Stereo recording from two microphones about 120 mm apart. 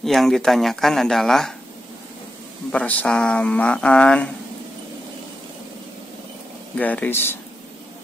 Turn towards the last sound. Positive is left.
turn(degrees=20)  # may be behind; listen again after turning